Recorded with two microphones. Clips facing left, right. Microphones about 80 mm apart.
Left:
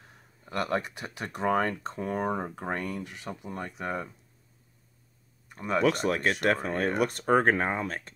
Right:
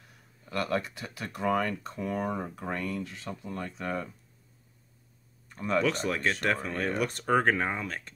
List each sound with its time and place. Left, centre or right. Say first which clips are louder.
0.0 s speech: left 2 dB; left
5.5 s speech: even; centre
5.8 s speech: left 4 dB; left